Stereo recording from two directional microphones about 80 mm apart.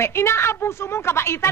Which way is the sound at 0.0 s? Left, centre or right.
Left.